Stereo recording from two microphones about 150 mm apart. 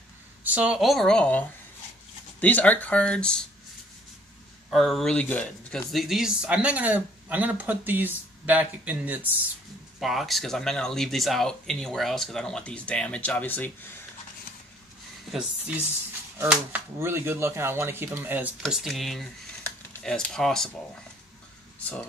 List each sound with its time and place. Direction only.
0.4 s speech: 10° right (ahead or behind); by 1.4 s 5° left (ahead or behind)
2.4 s speech: 10° left (ahead or behind)
4.6 s speech: centre (ahead or behind)
9.9 s speech: centre (ahead or behind)
15.3 s speech: 10° right (ahead or behind)
18.6 s speech: centre (ahead or behind)